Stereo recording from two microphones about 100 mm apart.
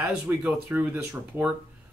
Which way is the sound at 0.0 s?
20° right (ahead or behind).